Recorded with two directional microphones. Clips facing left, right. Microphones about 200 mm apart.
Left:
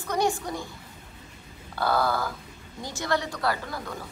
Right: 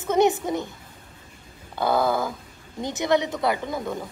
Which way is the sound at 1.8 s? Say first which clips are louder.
Right 3 dB; 20° right (ahead or behind).